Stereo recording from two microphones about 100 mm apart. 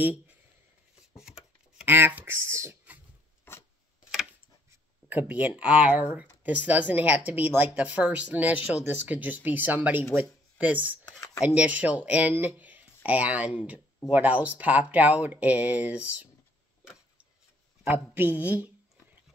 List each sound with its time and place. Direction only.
1.9 s speech: 20° right (ahead or behind)
3.5 s rub: 25° left (ahead or behind)
4.3 s a sound: 15° right (ahead or behind)
6.4 s speech: 15° right (ahead or behind)
11.1 s a sound: 35° left (ahead or behind)
11.4 s speech: 15° right (ahead or behind)
17.8 s speech: 20° right (ahead or behind)